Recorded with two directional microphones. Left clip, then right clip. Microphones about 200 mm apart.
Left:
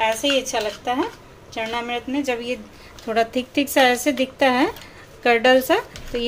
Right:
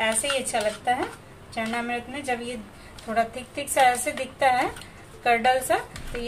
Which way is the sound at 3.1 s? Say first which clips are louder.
Left 5 dB; 50° left (ahead or behind).